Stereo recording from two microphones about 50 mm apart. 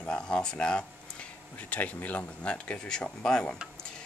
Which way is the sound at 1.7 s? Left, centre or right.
Left.